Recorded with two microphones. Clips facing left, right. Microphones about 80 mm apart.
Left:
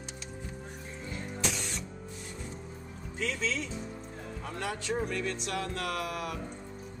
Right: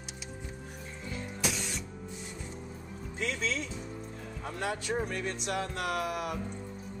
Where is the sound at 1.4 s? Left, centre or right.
Centre.